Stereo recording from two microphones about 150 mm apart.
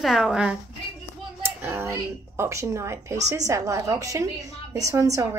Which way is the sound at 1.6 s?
15° right (ahead or behind).